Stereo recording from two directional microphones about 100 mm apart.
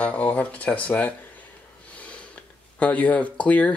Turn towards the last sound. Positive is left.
turn(degrees=15)  # may be behind; listen again after turning